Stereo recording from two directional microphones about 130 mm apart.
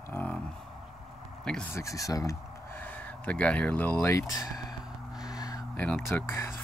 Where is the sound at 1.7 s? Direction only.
25° left (ahead or behind).